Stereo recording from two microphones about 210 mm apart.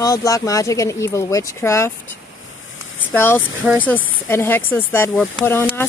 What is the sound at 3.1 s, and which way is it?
Speech, 10° left (ahead or behind).